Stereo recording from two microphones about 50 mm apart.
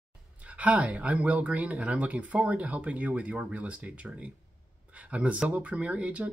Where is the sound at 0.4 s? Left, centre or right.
Right.